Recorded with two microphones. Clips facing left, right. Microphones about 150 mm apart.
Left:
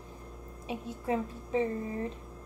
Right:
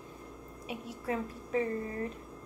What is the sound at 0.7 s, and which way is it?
A woman's voice, 30° left (ahead or behind).